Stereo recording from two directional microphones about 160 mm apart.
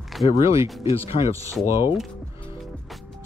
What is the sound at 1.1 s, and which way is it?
Speech, 45° left (ahead or behind).